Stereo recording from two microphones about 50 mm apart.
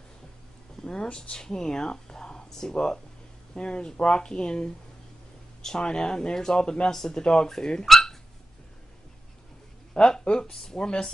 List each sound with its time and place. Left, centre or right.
0.8 s a sound: centre
1.1 s speech: centre
7.9 s dog: centre
9.9 s speech: centre